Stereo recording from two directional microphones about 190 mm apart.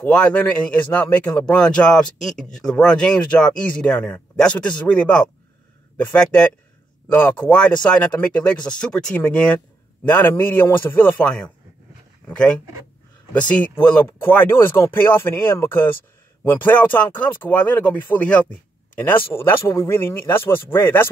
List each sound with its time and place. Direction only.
0.0 s speech: 5° left (ahead or behind)